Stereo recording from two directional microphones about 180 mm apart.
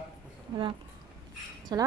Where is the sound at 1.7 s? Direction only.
25° right (ahead or behind).